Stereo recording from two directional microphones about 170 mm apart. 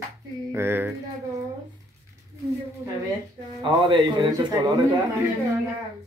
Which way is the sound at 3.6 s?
30° right (ahead or behind).